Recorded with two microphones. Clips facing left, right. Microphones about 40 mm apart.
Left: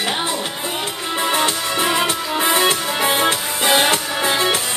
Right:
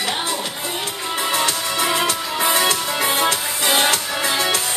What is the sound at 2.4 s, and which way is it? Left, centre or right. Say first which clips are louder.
Music: left 1 dB; left.